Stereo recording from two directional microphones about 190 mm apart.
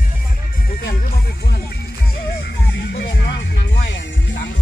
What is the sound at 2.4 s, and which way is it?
Music, 60° left (ahead or behind).